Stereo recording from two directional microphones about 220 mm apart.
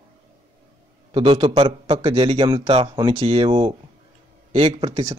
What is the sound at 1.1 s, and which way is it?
Speech, 20° right (ahead or behind).